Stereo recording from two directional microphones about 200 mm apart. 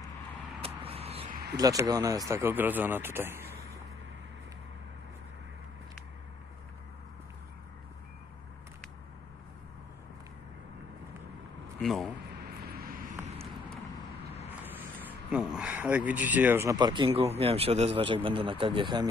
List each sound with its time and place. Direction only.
0.6 s vehicle: 30° right (ahead or behind)
1.3 s a sound: 55° right (ahead or behind)
1.6 s speech: 20° right (ahead or behind)
11.8 s speech: centre (ahead or behind)
12.4 s vehicle: 50° right (ahead or behind)
14.6 s speech: 5° right (ahead or behind); by 19.0 s 25° right (ahead or behind)